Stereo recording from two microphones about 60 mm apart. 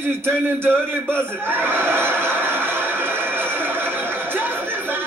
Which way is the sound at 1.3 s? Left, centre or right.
Right.